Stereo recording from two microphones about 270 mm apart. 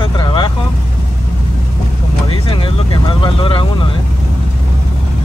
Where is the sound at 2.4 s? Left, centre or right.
Centre.